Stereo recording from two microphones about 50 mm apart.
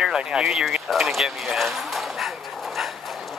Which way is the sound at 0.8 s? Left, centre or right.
Centre.